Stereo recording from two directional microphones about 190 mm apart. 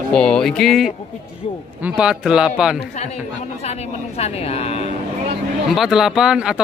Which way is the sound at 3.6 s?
35° left (ahead or behind).